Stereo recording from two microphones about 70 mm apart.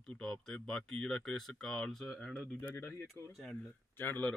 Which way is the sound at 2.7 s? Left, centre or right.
Left.